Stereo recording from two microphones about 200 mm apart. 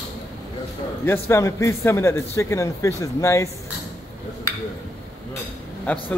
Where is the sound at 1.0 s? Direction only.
10° left (ahead or behind).